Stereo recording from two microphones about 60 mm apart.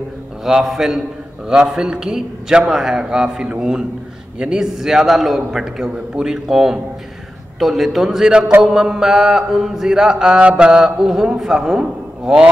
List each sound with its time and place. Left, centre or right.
0.4 s a man's voice: centre